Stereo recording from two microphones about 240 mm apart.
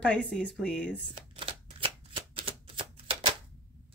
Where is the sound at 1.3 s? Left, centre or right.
Right.